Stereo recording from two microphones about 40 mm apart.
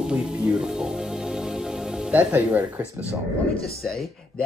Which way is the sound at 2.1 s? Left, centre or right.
Right.